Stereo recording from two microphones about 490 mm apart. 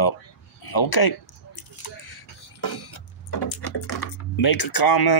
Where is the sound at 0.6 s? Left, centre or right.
Left.